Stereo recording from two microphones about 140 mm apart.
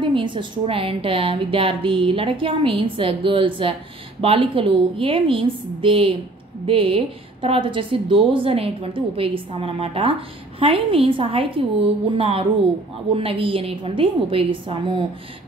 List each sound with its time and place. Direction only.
0.0 s a woman's voice: 35° right (ahead or behind)